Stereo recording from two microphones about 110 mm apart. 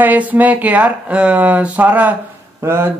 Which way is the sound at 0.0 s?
15° right (ahead or behind).